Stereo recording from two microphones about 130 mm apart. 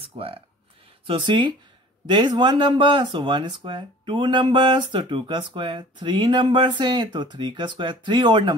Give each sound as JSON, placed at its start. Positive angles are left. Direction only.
{"t": 0.0, "sound": "speech", "side_deg": -45}